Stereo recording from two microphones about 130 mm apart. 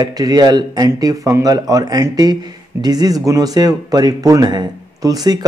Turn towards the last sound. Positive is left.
turn(degrees=-30)  # may be behind; listen again after turning